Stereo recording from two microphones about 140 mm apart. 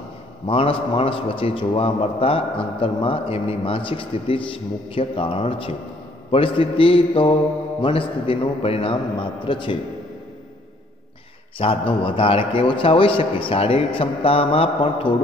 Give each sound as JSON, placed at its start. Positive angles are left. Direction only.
{"t": 0.5, "sound": "a man's voice", "side_deg": 40}
{"t": 11.5, "sound": "a man's voice", "side_deg": 40}